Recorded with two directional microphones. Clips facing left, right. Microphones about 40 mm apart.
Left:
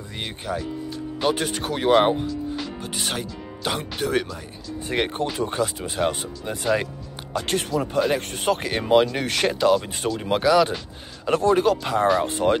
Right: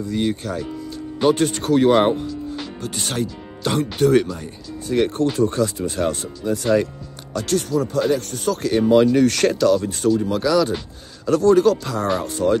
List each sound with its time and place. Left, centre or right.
0.0 s speech: left
1.2 s speech: centre
4.8 s speech: left
5.2 s speech: centre
7.3 s speech: left